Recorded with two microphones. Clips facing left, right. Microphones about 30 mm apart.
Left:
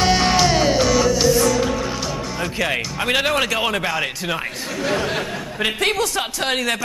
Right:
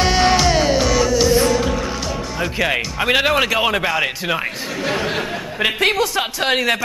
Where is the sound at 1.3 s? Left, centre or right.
Right.